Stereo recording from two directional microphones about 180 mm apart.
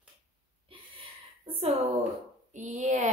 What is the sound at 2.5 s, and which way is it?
Speech, 45° right (ahead or behind).